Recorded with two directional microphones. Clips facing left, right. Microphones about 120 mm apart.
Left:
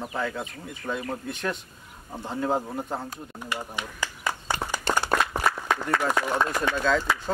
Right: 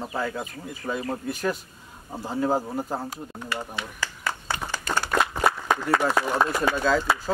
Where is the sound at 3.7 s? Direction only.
15° left (ahead or behind).